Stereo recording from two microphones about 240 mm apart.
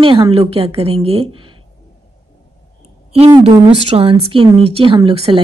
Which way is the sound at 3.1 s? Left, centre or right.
Right.